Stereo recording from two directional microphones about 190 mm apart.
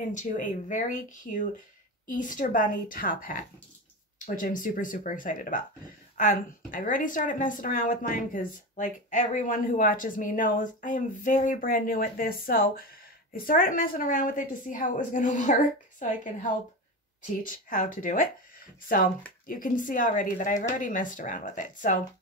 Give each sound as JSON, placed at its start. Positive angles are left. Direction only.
{"t": 0.1, "sound": "a woman's voice", "side_deg": 40}
{"t": 17.5, "sound": "speech", "side_deg": 45}
{"t": 19.4, "sound": "speech", "side_deg": 45}